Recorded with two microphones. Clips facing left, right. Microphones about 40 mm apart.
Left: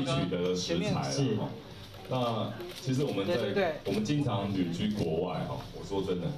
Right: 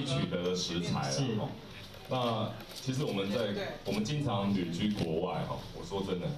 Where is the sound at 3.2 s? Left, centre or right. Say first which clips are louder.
Left 5 dB; left.